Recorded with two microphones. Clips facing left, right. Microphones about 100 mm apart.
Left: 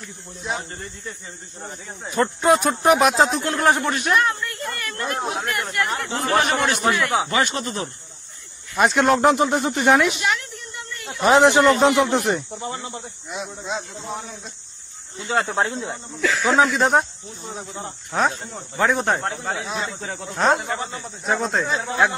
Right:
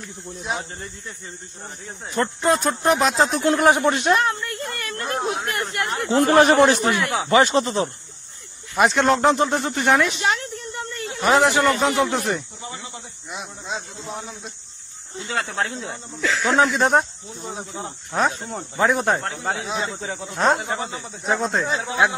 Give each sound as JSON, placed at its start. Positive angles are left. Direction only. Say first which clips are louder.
{"t": 2.0, "sound": "speech", "louder": "left 2 dB", "side_deg": 20}
{"t": 3.4, "sound": "speech", "louder": "right 3 dB", "side_deg": -15}
{"t": 8.7, "sound": "speech", "louder": "even", "side_deg": 0}
{"t": 10.2, "sound": "a sound", "louder": "right 1 dB", "side_deg": -35}
{"t": 11.1, "sound": "speech", "louder": "left 3 dB", "side_deg": 20}
{"t": 15.1, "sound": "speech", "louder": "left 4 dB", "side_deg": 25}
{"t": 16.2, "sound": "speech", "louder": "left 1 dB", "side_deg": -20}
{"t": 16.7, "sound": "speech", "louder": "even", "side_deg": 0}
{"t": 19.5, "sound": "speech", "louder": "right 1 dB", "side_deg": -15}
{"t": 20.3, "sound": "speech", "louder": "even", "side_deg": 0}
{"t": 20.6, "sound": "speech", "louder": "even", "side_deg": -20}
{"t": 20.9, "sound": "speech", "louder": "even", "side_deg": 0}